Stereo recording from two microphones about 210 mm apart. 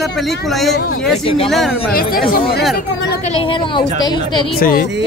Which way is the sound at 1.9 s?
45° left (ahead or behind).